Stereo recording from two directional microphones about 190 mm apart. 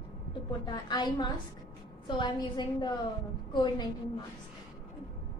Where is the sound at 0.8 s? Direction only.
20° left (ahead or behind).